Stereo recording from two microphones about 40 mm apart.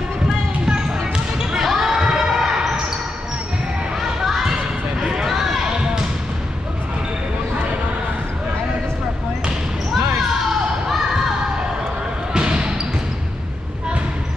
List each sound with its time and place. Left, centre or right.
0.7 s basketball bounce: right
1.6 s basketball bounce: centre
4.0 s a sound: centre
12.3 s basketball bounce: right